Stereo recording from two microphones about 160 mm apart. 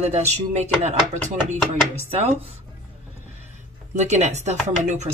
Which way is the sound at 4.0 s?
45° right (ahead or behind).